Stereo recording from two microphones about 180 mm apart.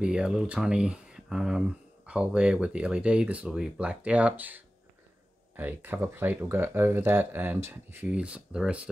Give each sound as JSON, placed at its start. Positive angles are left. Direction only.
{"t": 0.0, "sound": "speech", "side_deg": -5}